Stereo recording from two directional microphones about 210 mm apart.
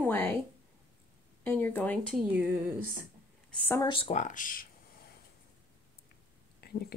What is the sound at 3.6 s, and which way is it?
Speech, 15° left (ahead or behind).